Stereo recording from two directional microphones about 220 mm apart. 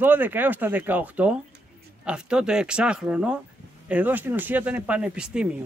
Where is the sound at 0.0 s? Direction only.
10° right (ahead or behind).